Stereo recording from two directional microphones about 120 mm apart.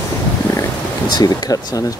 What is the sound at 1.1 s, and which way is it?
Speech, 30° left (ahead or behind).